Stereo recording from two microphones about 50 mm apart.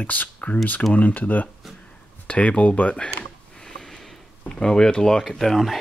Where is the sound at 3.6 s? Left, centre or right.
Centre.